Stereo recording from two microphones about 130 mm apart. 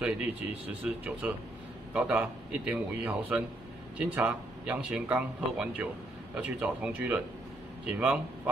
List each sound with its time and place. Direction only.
0.0 s speech: 10° right (ahead or behind)